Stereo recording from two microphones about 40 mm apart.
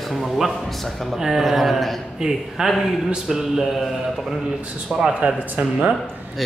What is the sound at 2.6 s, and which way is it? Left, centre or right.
Speech, centre.